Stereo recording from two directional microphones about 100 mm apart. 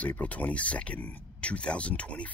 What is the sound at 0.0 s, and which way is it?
Speech, 15° left (ahead or behind).